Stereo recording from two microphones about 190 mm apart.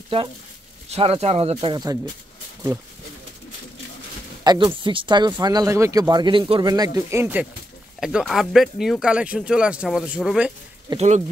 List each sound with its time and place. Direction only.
0.8 s speech: 30° right (ahead or behind)
4.5 s speech: 25° right (ahead or behind); by 10.5 s 5° right (ahead or behind)
11.0 s speech: 40° right (ahead or behind)